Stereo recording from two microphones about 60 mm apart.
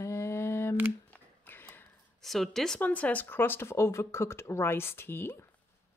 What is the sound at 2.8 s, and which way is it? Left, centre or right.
Speech, left.